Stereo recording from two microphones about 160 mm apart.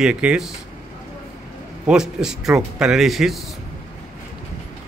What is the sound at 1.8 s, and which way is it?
A man's voice, 5° right (ahead or behind).